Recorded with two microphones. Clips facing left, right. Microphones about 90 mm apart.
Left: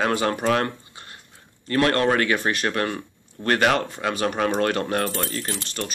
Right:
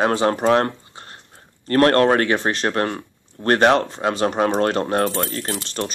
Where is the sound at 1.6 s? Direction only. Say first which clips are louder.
Right 5 dB; 45° right (ahead or behind).